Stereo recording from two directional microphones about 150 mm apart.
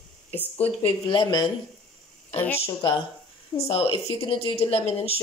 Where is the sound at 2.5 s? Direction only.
35° left (ahead or behind).